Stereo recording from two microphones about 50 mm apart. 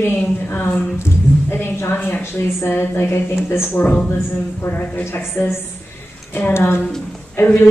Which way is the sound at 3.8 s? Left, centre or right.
Left.